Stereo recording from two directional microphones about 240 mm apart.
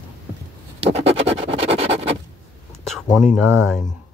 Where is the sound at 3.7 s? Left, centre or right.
Centre.